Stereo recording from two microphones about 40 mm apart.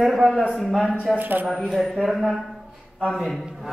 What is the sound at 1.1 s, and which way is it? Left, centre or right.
Speech, right.